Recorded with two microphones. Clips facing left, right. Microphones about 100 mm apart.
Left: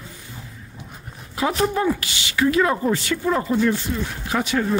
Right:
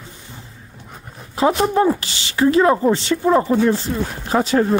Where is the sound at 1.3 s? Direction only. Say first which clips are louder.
Right 5 dB; 30° right (ahead or behind).